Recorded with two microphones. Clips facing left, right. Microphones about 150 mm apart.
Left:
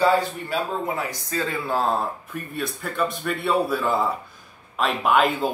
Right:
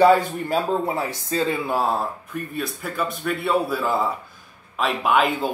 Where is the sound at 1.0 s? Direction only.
25° right (ahead or behind).